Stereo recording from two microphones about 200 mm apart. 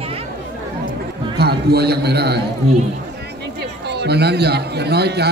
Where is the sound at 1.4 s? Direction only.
55° right (ahead or behind).